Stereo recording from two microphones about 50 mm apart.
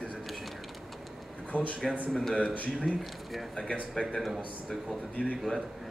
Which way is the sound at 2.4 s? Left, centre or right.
Left.